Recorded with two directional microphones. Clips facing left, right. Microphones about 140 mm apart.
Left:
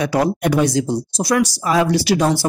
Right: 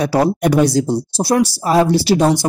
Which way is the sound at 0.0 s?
35° right (ahead or behind).